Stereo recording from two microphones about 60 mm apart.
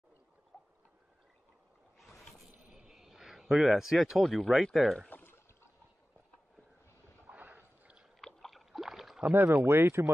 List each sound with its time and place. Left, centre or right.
0.5 s boat: left
2.7 s a sound: centre
4.2 s speech: centre
5.1 s a sound: left
7.2 s boat: right
8.2 s rowboat: centre
9.3 s speech: right
9.7 s speech: right